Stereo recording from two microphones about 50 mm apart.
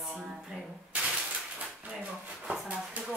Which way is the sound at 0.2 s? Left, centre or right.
Centre.